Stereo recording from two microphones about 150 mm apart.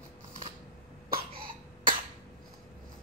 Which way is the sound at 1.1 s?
70° right (ahead or behind).